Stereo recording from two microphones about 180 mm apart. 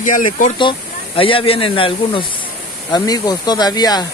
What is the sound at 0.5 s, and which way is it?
Speech, 30° left (ahead or behind).